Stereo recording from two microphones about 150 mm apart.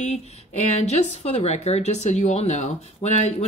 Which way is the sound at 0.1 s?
45° left (ahead or behind).